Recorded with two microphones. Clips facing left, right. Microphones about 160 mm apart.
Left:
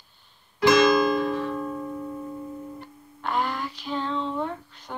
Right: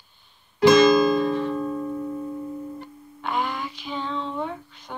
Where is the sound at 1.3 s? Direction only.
25° right (ahead or behind).